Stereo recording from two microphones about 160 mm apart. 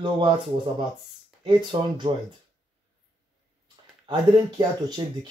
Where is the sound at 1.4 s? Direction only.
30° right (ahead or behind).